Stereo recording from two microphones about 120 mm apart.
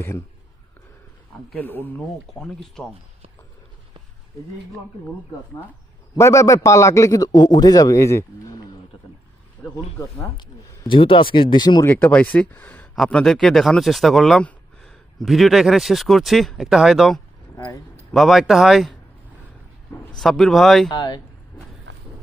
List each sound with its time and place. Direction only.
1.6 s speech: 15° left (ahead or behind)
2.4 s speech: 5° left (ahead or behind)
6.1 s a man's voice: 25° left (ahead or behind)
9.6 s speech: 10° left (ahead or behind)
9.9 s a man's voice: 25° left (ahead or behind)
10.9 s speech: 45° left (ahead or behind)
11.8 s speech: 15° left (ahead or behind)
12.9 s speech: 5° left (ahead or behind)
20.2 s speech: centre (ahead or behind)
20.9 s speech: 40° left (ahead or behind)